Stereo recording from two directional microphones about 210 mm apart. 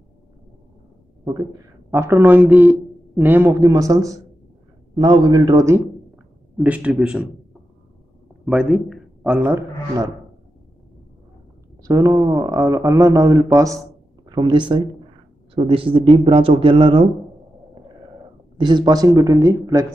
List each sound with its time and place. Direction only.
1.9 s speech: 10° right (ahead or behind)
6.1 s a sound: centre (ahead or behind)
8.5 s a man's voice: centre (ahead or behind)
11.8 s speech: 15° right (ahead or behind)
18.6 s speech: 20° right (ahead or behind)